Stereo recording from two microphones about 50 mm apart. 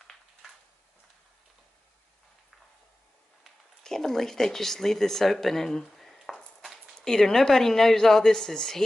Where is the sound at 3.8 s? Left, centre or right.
Centre.